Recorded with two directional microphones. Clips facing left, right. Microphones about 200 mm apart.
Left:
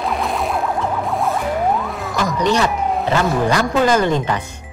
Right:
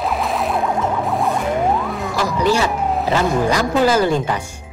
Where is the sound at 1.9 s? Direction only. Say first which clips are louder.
Right 1 dB; 5° right (ahead or behind).